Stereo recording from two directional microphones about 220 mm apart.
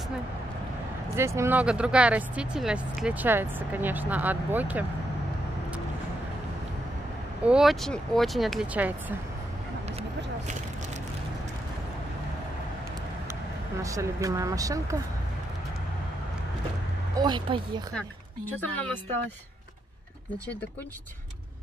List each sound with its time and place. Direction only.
1.1 s speech: 10° right (ahead or behind)
7.4 s speech: centre (ahead or behind)
13.8 s speech: 15° right (ahead or behind)
17.2 s speech: 20° right (ahead or behind)
17.9 s a woman's voice: 5° left (ahead or behind)